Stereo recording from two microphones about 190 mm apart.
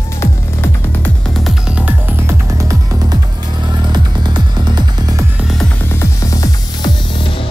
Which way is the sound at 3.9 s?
20° right (ahead or behind).